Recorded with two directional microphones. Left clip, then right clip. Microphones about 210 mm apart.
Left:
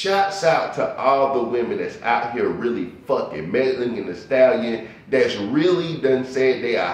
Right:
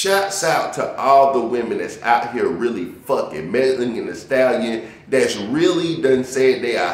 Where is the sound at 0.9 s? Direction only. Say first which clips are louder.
Right 6 dB; 20° right (ahead or behind).